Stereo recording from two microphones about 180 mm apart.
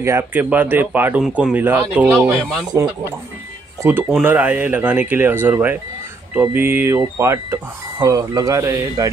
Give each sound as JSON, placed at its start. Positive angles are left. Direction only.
{"t": 0.0, "sound": "speech", "side_deg": -10}